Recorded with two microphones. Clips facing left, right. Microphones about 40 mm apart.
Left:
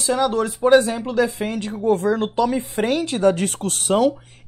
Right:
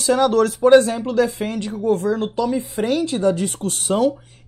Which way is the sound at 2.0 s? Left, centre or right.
Left.